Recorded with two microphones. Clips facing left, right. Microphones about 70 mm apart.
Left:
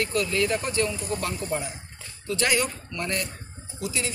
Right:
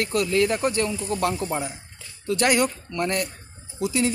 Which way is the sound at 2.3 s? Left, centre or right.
Right.